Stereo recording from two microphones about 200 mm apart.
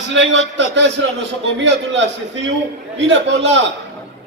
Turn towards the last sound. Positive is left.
turn(degrees=-60)  # may be behind; listen again after turning